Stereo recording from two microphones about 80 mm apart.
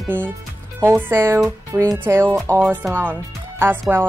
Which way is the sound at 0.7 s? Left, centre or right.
Right.